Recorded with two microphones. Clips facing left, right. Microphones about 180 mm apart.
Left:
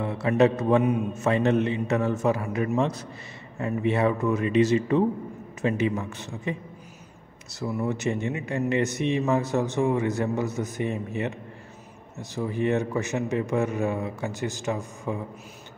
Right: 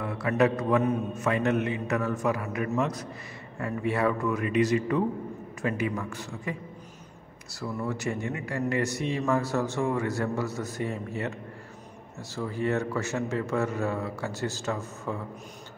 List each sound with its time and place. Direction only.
0.0 s a man's voice: 25° left (ahead or behind)
7.6 s a man's voice: 20° left (ahead or behind)